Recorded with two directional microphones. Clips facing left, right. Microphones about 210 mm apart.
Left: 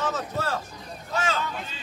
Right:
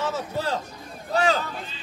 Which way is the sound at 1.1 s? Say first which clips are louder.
Right 5 dB; 35° right (ahead or behind).